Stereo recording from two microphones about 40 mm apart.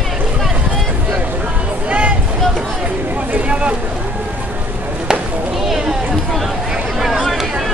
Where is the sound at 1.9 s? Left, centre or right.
Right.